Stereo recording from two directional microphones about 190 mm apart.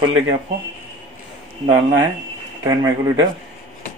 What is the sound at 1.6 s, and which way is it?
Speech, 20° right (ahead or behind).